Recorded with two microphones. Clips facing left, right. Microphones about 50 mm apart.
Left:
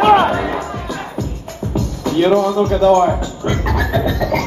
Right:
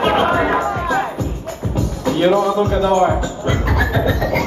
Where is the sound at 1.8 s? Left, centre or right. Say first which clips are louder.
Left 1 dB; centre.